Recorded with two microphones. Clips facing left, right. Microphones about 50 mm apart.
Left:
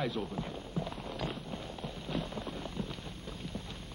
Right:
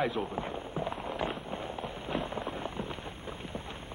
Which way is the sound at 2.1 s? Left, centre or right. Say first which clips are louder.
Right 4 dB; right.